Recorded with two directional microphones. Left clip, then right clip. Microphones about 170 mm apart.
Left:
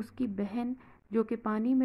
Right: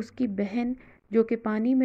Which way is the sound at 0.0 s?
15° right (ahead or behind).